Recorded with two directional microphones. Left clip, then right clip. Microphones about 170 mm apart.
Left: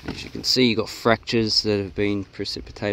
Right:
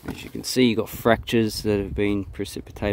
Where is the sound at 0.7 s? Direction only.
20° right (ahead or behind).